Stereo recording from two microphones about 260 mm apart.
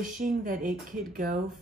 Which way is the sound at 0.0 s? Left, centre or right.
Right.